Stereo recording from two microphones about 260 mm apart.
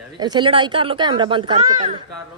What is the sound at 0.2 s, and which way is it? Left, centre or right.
Speech, centre.